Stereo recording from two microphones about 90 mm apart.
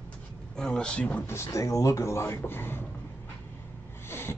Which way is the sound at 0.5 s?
10° left (ahead or behind).